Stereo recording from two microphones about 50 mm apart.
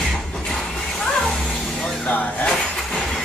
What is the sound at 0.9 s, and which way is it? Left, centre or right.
Music, centre.